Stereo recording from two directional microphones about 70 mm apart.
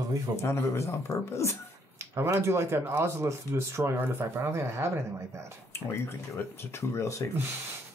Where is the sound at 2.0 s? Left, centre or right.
Right.